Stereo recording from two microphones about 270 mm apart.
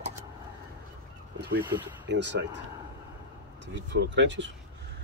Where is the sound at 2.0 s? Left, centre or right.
Right.